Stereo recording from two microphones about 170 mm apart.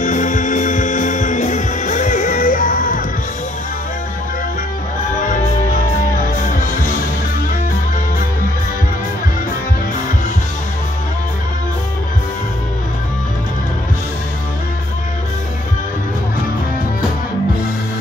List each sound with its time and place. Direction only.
0.0 s music: 50° left (ahead or behind)
5.2 s music: 50° left (ahead or behind)